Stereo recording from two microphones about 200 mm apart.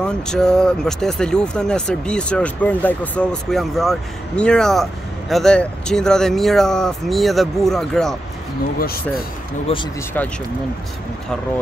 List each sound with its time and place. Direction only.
0.0 s speech: 5° left (ahead or behind)
8.7 s speech: 50° left (ahead or behind)
9.7 s speech: 30° left (ahead or behind)
10.1 s speech: 10° left (ahead or behind)